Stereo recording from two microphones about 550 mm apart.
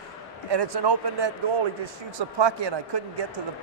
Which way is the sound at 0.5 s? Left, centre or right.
Right.